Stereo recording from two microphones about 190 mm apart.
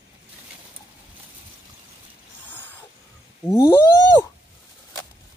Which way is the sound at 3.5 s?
20° left (ahead or behind).